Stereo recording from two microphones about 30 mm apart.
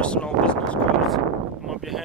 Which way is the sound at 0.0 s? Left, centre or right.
Left.